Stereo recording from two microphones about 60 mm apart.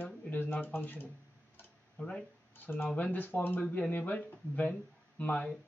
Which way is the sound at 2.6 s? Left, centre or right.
Left.